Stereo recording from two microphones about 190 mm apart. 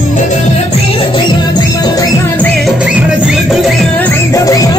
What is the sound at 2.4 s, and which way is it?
Music, centre (ahead or behind).